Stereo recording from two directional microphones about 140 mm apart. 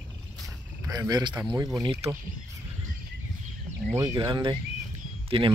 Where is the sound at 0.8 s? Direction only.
25° right (ahead or behind).